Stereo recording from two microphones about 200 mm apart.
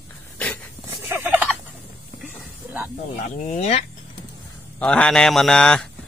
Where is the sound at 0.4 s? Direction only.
5° left (ahead or behind).